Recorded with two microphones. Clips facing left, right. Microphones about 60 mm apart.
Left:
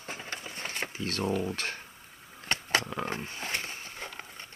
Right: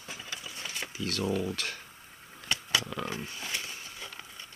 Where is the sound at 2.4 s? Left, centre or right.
Left.